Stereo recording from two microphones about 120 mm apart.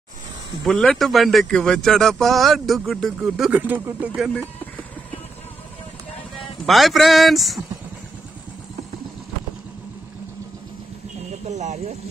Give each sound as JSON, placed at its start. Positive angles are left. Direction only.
{"t": 0.7, "sound": "speech", "side_deg": 5}
{"t": 6.6, "sound": "speech", "side_deg": 0}
{"t": 11.4, "sound": "speech", "side_deg": -75}